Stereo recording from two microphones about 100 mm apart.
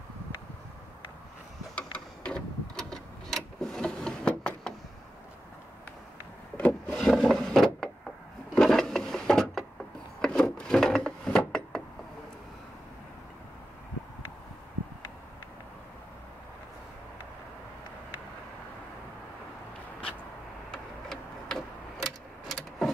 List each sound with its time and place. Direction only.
1.8 s a sound: 10° left (ahead or behind)
6.5 s wood: 15° left (ahead or behind)
20.7 s tick-tock: 5° left (ahead or behind)
22.0 s vehicle: centre (ahead or behind)